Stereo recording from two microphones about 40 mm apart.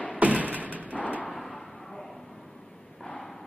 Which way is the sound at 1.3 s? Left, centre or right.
Centre.